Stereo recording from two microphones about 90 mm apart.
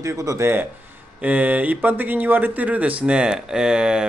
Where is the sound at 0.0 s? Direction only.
35° right (ahead or behind).